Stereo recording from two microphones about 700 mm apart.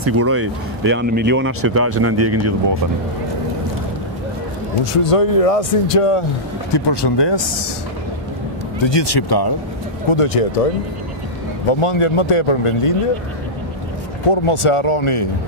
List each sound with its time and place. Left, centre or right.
0.0 s speech: centre
5.0 s speech: left
6.7 s speech: left
8.7 s speech: left
10.1 s speech: left
11.8 s speech: left
14.3 s speech: left